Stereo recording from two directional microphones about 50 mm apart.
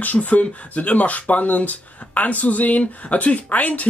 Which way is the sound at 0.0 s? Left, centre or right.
Left.